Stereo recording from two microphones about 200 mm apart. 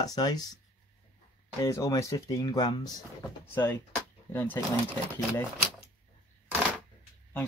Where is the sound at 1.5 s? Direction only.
15° left (ahead or behind).